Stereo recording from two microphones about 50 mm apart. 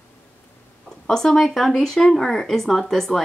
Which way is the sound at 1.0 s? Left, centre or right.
Centre.